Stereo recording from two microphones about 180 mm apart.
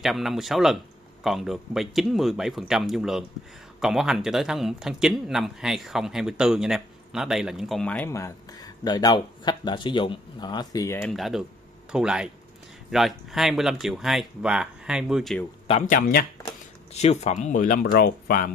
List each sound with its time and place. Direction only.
0.0 s speech: centre (ahead or behind)
11.1 s speech: centre (ahead or behind)
15.9 s speech: 55° left (ahead or behind)
16.9 s speech: 35° left (ahead or behind); by 18.5 s 55° left (ahead or behind)